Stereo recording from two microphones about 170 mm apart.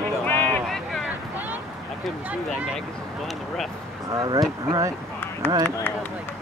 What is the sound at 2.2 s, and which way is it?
Speech, 5° right (ahead or behind).